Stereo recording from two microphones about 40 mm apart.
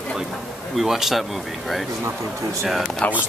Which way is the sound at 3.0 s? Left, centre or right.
Left.